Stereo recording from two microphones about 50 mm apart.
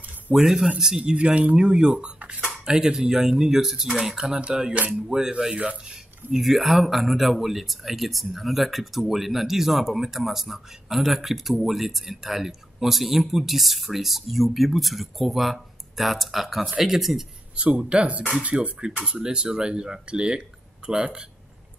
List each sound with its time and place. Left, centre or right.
0.3 s speech: right
0.7 s speech: centre
2.1 s speech: right
2.6 s speech: centre
6.4 s speech: centre
17.6 s speech: right
18.7 s speech: centre